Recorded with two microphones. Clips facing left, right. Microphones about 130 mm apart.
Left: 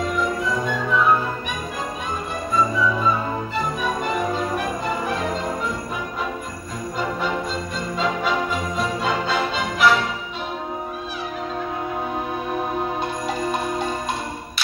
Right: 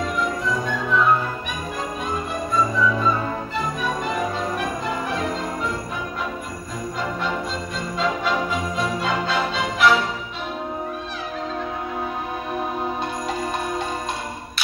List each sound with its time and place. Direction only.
0.2 s music: 5° left (ahead or behind)
2.8 s music: 5° left (ahead or behind)
8.0 s music: centre (ahead or behind)